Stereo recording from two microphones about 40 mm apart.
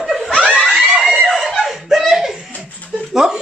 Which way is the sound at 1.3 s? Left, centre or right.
Centre.